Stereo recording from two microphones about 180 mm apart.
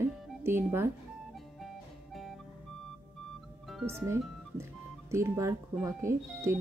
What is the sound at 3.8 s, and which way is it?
Speech, 15° right (ahead or behind).